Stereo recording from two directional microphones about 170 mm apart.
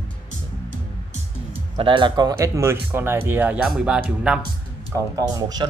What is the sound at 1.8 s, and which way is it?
Speech, 30° right (ahead or behind).